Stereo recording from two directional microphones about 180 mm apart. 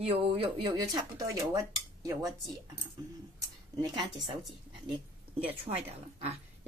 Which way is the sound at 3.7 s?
20° right (ahead or behind).